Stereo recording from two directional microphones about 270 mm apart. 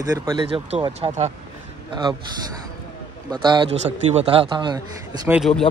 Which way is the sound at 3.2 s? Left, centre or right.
Centre.